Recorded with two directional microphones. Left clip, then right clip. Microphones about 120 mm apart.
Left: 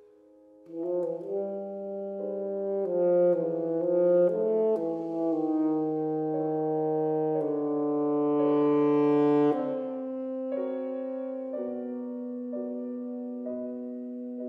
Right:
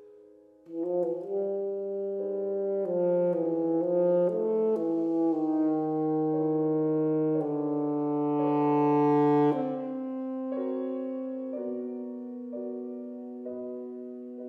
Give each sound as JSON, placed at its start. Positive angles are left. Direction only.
{"t": 0.7, "sound": "brass instrument", "side_deg": -35}
{"t": 2.3, "sound": "french horn", "side_deg": -40}
{"t": 10.6, "sound": "music", "side_deg": -40}